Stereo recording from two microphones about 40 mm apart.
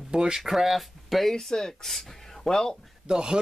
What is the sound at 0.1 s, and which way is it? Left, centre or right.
Speech, centre.